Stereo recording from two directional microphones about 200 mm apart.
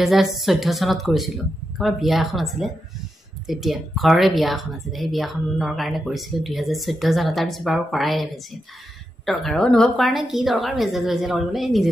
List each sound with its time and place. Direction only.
0.0 s a woman's voice: centre (ahead or behind)